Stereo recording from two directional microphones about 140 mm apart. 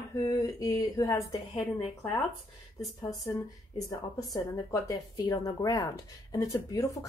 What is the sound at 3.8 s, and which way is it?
A woman's voice, 25° left (ahead or behind).